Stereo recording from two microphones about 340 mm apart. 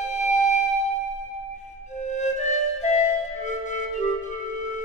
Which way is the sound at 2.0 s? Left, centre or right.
Left.